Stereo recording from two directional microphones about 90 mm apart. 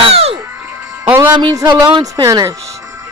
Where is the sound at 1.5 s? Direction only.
45° right (ahead or behind).